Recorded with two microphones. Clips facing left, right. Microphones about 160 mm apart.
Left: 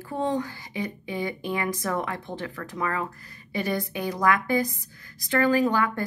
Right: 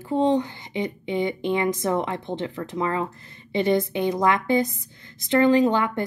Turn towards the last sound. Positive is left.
turn(degrees=-20)  # may be behind; listen again after turning